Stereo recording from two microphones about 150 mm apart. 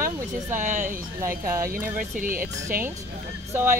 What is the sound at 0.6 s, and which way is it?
Speech, 55° right (ahead or behind).